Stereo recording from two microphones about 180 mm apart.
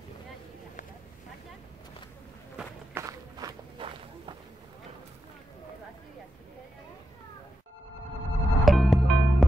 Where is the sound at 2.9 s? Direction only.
15° right (ahead or behind).